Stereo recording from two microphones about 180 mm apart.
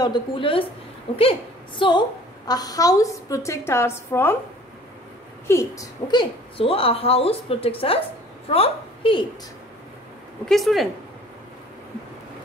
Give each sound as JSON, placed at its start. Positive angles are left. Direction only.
{"t": 0.0, "sound": "a woman's voice", "side_deg": 25}
{"t": 5.5, "sound": "a woman's voice", "side_deg": 15}
{"t": 10.5, "sound": "speech", "side_deg": 0}